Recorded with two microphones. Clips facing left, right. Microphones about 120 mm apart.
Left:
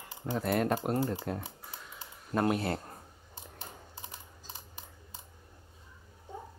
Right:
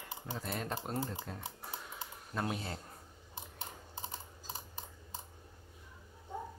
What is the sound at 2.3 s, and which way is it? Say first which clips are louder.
Speech: left 9 dB; 55° left (ahead or behind).